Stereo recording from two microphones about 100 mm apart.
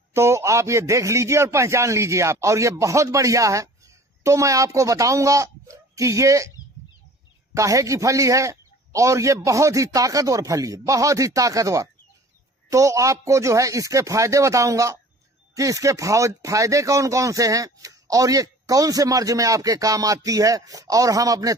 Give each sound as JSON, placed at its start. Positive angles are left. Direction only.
{"t": 0.1, "sound": "a man's voice", "side_deg": -25}
{"t": 7.5, "sound": "a man's voice", "side_deg": -35}